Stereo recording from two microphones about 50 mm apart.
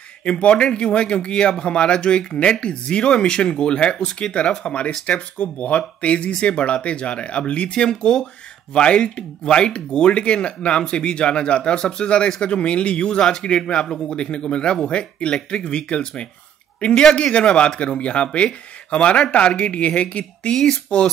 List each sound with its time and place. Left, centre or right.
0.2 s speech: left
20.5 s speech: centre